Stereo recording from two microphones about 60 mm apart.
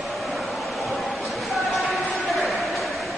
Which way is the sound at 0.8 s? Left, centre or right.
Centre.